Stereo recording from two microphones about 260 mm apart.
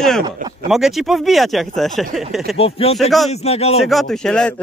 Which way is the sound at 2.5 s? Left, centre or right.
Left.